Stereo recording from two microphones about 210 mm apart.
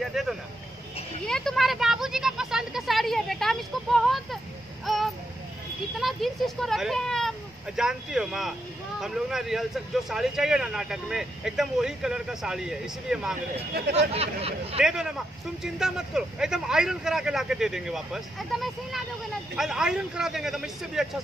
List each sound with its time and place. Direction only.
0.0 s a sound: centre (ahead or behind)
5.9 s speech: centre (ahead or behind)
13.7 s speech: 50° right (ahead or behind)
14.1 s speech: 30° right (ahead or behind)
14.8 s speech: 5° right (ahead or behind)